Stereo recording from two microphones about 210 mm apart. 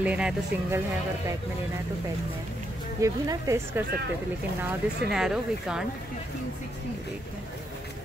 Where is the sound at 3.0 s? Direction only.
15° right (ahead or behind).